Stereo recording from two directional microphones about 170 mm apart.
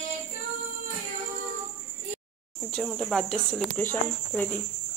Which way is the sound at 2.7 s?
Centre (ahead or behind).